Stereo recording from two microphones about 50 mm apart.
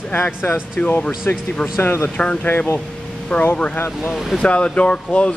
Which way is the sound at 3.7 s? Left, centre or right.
Left.